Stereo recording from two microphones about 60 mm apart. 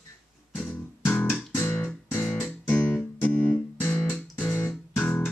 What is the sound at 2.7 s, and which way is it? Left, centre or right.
Music, left.